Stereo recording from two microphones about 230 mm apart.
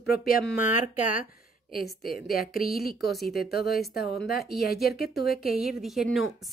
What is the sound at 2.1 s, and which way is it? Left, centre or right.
A woman's voice, left.